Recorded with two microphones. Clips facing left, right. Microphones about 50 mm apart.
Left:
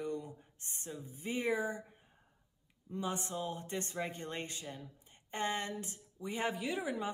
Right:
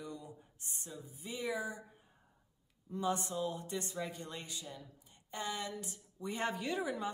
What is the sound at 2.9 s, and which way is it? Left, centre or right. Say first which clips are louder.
Speech: right 2 dB; left.